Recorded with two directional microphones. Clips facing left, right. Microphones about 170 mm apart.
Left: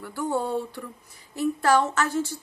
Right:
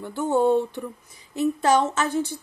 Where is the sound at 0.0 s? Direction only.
20° right (ahead or behind).